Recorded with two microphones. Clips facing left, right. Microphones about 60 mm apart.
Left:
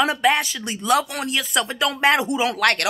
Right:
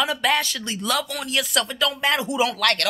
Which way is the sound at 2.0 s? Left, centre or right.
Left.